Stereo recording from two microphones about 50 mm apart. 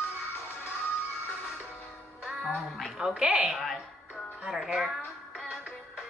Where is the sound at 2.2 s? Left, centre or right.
Centre.